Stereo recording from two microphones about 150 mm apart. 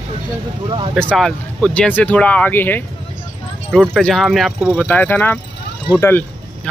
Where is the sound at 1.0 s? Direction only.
5° left (ahead or behind).